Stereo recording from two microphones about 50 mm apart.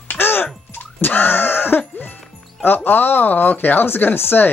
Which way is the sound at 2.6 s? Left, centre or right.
Left.